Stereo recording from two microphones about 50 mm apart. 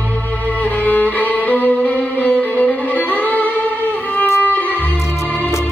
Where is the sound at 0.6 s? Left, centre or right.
Left.